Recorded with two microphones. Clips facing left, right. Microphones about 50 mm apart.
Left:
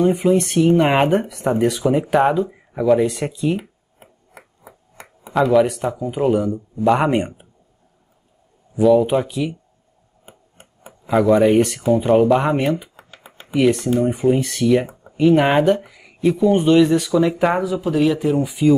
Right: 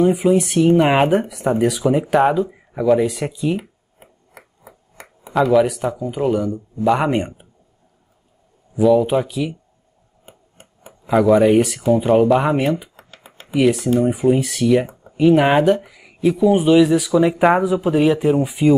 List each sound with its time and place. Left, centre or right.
0.0 s speech: centre
4.3 s a sound: left
5.3 s speech: centre
8.7 s speech: centre
10.2 s tick-tock: centre
10.9 s speech: centre
12.9 s computer keyboard: centre
13.5 s speech: centre